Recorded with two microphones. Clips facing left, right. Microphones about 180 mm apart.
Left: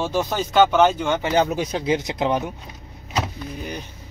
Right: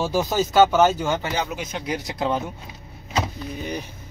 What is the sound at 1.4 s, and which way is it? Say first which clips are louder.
Speech: left 6 dB; 35° left (ahead or behind).